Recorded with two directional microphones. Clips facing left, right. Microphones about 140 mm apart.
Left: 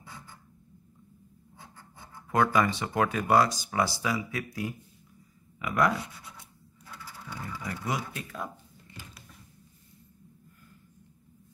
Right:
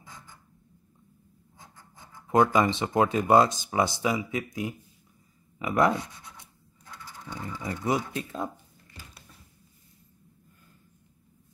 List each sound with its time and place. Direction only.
2.2 s speech: 20° right (ahead or behind)
7.2 s speech: 20° right (ahead or behind)